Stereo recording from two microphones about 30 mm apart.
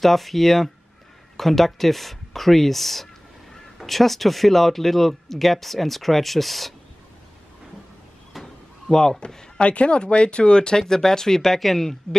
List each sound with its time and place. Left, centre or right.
0.0 s speech: centre
8.3 s a sound: centre
8.8 s speech: centre
9.6 s speech: left
10.8 s speech: centre